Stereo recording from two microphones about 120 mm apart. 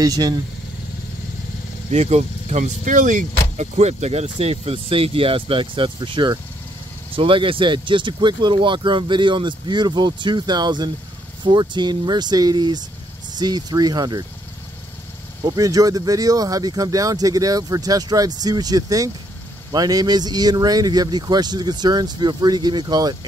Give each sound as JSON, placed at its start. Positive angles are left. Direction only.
{"t": 0.0, "sound": "speech", "side_deg": -30}
{"t": 1.9, "sound": "speech", "side_deg": -65}
{"t": 15.4, "sound": "speech", "side_deg": -30}